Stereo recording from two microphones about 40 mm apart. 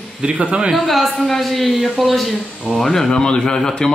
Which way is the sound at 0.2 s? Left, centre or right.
Right.